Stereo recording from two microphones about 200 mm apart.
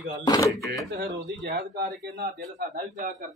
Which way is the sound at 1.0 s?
55° right (ahead or behind).